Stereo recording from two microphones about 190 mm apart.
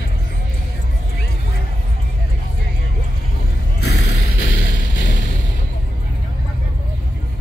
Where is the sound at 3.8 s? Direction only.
60° left (ahead or behind).